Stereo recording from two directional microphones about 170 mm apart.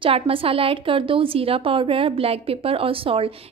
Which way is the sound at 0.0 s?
30° right (ahead or behind).